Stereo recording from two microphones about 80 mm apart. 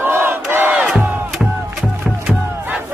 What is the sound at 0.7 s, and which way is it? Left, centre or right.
Crowd, centre.